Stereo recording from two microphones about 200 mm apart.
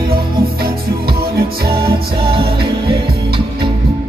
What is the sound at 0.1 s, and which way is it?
Music, 50° right (ahead or behind).